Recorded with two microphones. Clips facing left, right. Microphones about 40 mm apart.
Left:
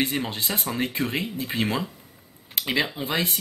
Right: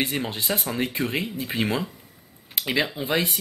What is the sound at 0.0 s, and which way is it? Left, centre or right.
Speech, centre.